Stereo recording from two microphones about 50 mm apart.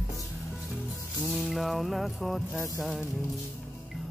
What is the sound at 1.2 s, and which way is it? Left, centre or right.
Music, centre.